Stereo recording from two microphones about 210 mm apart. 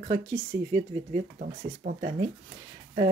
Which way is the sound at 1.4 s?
40° right (ahead or behind).